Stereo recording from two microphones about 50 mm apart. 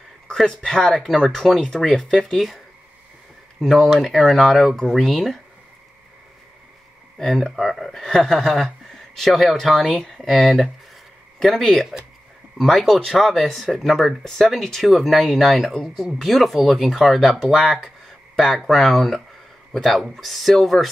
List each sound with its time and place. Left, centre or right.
0.7 s speech: centre
3.6 s speech: centre
7.2 s speech: centre